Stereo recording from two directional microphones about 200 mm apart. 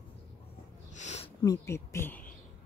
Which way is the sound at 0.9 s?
35° left (ahead or behind).